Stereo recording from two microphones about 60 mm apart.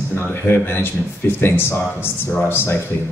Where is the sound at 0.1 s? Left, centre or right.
Left.